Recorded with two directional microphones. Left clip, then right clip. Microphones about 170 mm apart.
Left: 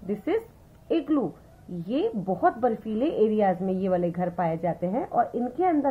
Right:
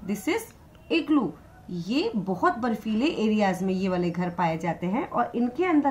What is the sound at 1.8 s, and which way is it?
A woman's voice, 40° left (ahead or behind).